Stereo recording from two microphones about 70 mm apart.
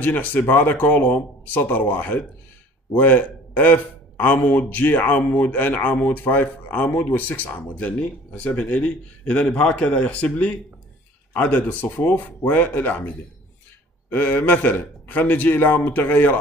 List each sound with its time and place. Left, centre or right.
0.0 s a man's voice: left
14.1 s a man's voice: left